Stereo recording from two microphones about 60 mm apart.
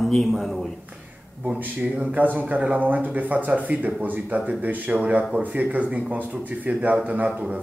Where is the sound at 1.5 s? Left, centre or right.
Right.